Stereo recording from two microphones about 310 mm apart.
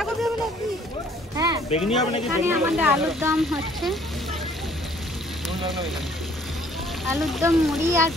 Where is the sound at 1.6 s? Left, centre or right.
Centre.